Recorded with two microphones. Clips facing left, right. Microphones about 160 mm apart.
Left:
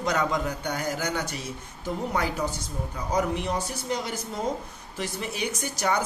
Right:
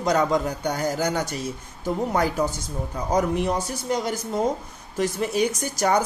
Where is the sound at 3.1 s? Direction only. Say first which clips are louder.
Right 4 dB; 45° right (ahead or behind).